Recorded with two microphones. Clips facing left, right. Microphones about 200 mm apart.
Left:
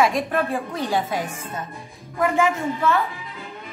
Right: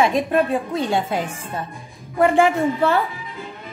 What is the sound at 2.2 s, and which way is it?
Speech, 30° right (ahead or behind).